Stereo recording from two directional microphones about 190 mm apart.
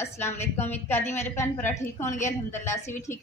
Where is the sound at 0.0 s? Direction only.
15° left (ahead or behind).